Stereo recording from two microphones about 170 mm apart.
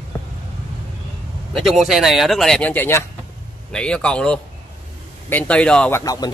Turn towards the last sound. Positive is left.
turn(degrees=20)  # may be behind; listen again after turning